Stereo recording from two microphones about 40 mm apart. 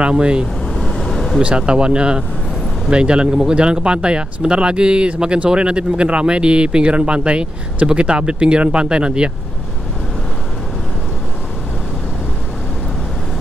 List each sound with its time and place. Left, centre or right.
0.0 s speech: right
0.7 s vehicle: centre
1.7 s speech: right